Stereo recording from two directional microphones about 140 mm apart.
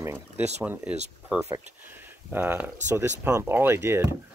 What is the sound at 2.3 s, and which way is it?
Speech, 15° right (ahead or behind).